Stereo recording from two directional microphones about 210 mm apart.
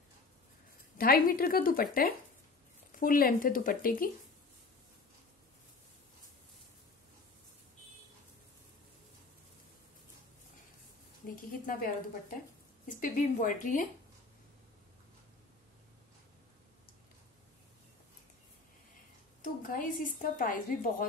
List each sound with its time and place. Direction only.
0.9 s a woman's voice: 45° left (ahead or behind)
11.6 s speech: 40° left (ahead or behind)
19.4 s speech: 40° left (ahead or behind)